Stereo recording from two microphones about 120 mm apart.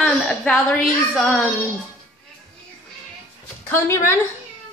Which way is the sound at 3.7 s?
20° left (ahead or behind).